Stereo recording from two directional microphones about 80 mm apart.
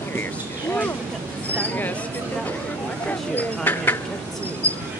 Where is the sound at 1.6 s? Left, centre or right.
Left.